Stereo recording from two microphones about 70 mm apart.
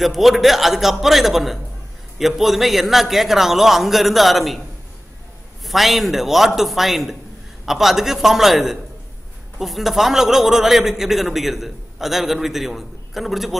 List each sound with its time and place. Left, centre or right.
0.0 s a man's voice: centre
5.7 s a man's voice: centre